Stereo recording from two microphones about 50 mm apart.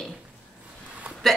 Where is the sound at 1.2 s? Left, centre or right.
Centre.